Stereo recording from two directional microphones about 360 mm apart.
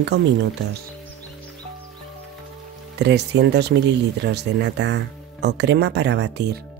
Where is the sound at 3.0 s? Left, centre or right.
Right.